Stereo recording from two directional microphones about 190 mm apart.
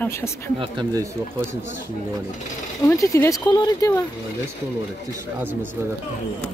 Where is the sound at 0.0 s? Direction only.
15° left (ahead or behind).